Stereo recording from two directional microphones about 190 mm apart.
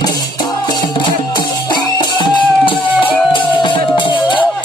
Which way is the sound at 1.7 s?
25° left (ahead or behind).